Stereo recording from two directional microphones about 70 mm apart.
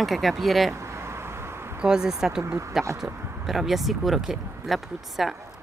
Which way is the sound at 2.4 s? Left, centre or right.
Right.